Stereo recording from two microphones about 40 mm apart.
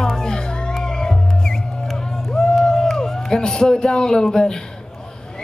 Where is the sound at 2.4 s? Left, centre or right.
Centre.